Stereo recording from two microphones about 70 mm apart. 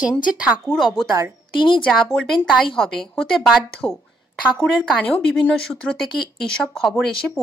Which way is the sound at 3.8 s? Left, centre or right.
Left.